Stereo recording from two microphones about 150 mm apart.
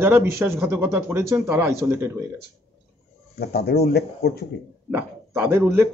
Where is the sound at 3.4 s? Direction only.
90° left.